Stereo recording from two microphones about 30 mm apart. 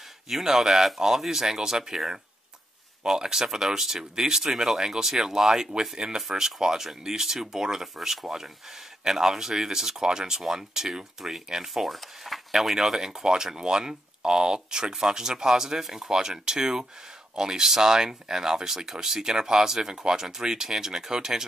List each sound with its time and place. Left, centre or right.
0.3 s speech: centre
3.0 s speech: right
9.0 s speech: centre
12.7 s speech: centre
16.1 s speech: right